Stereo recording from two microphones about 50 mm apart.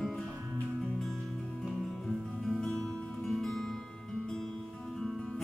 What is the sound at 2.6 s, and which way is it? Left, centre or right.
Music, centre.